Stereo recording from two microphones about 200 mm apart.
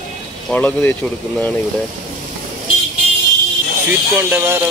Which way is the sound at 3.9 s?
10° right (ahead or behind).